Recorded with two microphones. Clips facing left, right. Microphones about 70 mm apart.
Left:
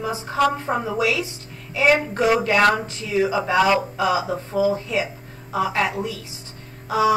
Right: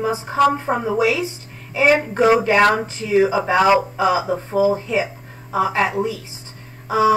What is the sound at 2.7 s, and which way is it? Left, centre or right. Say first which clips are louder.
Speech: right 5 dB; right.